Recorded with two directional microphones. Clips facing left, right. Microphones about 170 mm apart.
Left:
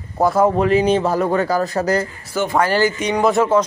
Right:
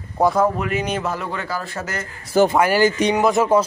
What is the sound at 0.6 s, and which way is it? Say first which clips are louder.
Speech: left 8 dB; 30° left (ahead or behind).